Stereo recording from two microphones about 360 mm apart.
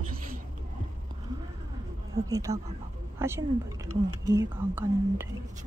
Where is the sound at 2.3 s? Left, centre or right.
Centre.